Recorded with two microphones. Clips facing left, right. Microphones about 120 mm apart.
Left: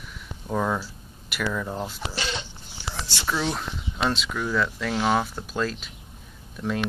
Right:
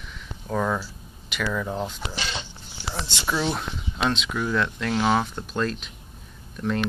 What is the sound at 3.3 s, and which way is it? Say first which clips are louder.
Speech: right 1 dB; 5° right (ahead or behind).